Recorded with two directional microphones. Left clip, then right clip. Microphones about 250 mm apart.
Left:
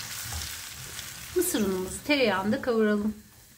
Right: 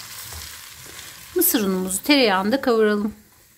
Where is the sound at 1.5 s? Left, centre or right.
Right.